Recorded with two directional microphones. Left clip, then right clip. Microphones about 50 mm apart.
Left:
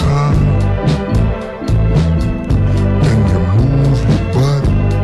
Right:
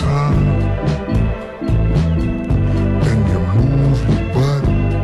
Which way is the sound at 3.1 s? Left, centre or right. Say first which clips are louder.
Left 3 dB; left.